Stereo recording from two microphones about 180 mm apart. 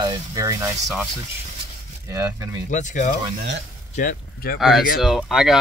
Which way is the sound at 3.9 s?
55° left (ahead or behind).